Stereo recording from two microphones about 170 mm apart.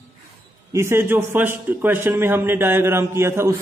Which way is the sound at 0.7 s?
15° right (ahead or behind).